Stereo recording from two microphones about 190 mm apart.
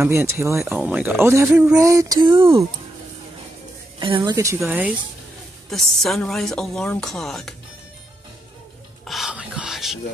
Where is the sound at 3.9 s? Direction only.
25° right (ahead or behind); by 7.6 s centre (ahead or behind).